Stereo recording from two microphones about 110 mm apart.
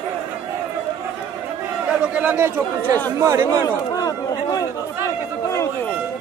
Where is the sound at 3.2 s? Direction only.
30° right (ahead or behind).